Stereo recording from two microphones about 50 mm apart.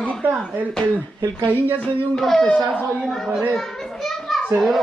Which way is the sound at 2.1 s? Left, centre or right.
Centre.